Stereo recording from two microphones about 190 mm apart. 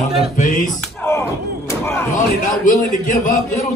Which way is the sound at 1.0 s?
15° left (ahead or behind).